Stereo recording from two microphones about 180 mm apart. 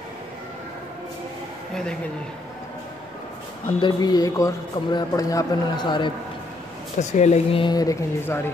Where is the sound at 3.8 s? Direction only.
20° left (ahead or behind).